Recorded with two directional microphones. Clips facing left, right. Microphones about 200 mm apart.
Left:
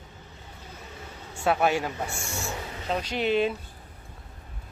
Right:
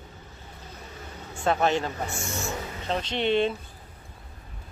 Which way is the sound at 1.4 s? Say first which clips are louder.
Even; 10° left (ahead or behind).